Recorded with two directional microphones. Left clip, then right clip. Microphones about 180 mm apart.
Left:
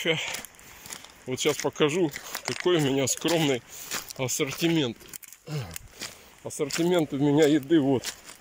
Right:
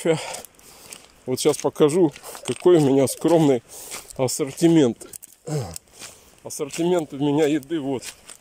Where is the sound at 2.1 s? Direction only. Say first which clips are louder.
Right 2 dB; centre (ahead or behind).